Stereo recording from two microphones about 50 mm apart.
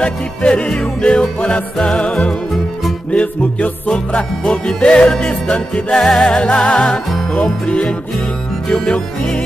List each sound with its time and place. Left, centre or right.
0.0 s music: left
4.5 s music: centre